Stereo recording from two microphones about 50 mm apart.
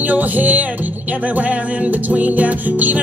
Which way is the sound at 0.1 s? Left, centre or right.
Right.